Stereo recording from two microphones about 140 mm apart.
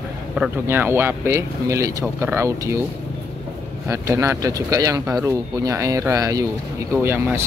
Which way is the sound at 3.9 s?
20° right (ahead or behind).